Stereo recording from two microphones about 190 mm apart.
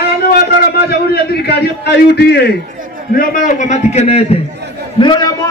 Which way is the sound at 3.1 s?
45° left (ahead or behind).